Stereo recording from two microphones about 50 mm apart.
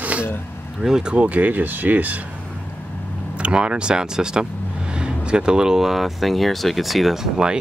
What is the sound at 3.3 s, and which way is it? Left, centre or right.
Speech, right.